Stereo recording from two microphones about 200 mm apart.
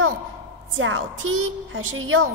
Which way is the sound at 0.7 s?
75° right (ahead or behind).